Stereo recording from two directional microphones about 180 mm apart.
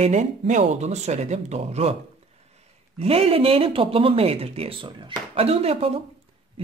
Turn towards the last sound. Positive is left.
turn(degrees=-30)  # may be behind; listen again after turning